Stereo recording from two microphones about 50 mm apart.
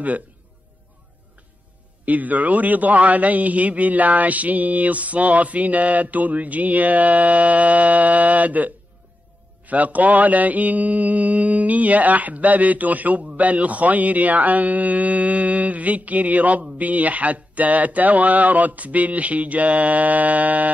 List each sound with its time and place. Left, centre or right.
2.0 s mantra: right